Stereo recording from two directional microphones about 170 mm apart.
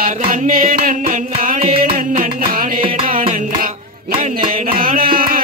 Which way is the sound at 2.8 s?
30° right (ahead or behind).